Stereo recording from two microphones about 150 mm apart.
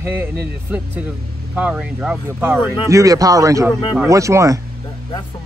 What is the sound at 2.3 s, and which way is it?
Speech, 15° right (ahead or behind).